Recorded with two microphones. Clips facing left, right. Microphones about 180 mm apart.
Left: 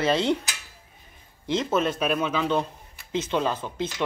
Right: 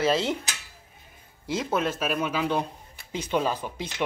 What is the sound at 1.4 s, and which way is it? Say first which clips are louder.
Speech: left 3 dB; 10° right (ahead or behind).